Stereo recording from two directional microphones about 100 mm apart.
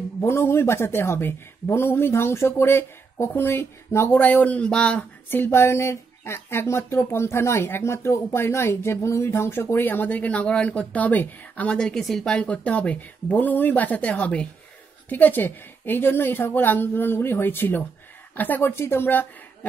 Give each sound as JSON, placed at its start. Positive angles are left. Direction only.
{"t": 0.2, "sound": "speech", "side_deg": 25}
{"t": 5.3, "sound": "speech", "side_deg": 20}